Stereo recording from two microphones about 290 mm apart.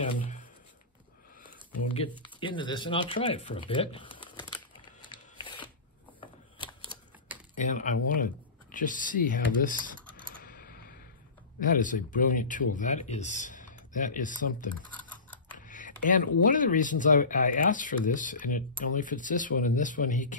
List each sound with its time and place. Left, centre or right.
2.2 s speech: centre
4.8 s a sound: centre
7.5 s speech: left
10.4 s computer keyboard: left
11.6 s speech: left
15.5 s typing: left
16.4 s speech: left